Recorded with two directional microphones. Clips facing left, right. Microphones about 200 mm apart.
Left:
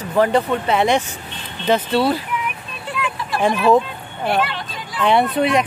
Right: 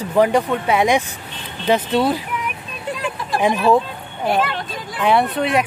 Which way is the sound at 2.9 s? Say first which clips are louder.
Left 1 dB; 40° right (ahead or behind).